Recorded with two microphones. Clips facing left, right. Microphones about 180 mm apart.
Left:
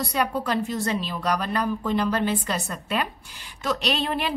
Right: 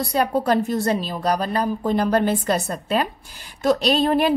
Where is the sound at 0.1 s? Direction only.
35° right (ahead or behind).